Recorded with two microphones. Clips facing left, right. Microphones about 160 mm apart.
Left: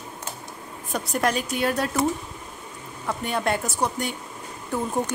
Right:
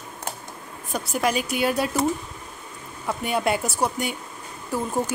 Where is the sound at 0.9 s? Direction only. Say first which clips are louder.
Even; 5° right (ahead or behind).